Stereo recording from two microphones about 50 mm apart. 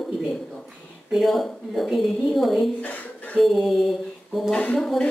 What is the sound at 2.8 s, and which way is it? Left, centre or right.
Speech, left.